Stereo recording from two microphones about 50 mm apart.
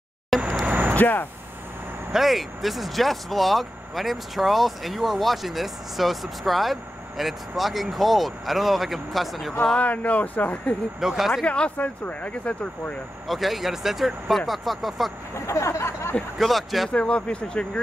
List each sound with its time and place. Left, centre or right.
0.3 s vehicle: centre
0.7 s vehicle: right
0.9 s speech: left
2.1 s speech: centre
9.8 s speech: left
11.0 s speech: centre
11.4 s speech: left
13.3 s speech: centre
15.3 s a sound: left
16.3 s speech: centre
16.9 s speech: left